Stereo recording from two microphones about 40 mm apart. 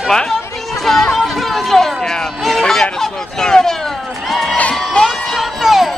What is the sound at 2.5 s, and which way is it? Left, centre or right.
Fowl, centre.